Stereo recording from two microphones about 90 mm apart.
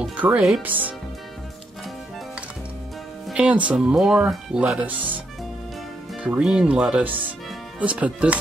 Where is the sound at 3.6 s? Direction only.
10° right (ahead or behind).